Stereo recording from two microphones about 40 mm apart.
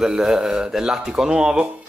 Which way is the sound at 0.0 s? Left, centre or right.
Centre.